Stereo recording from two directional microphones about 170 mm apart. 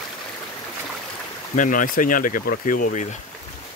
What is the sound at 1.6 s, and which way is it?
Speech, 50° left (ahead or behind).